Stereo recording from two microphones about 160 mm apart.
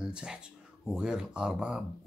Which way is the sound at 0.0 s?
5° right (ahead or behind).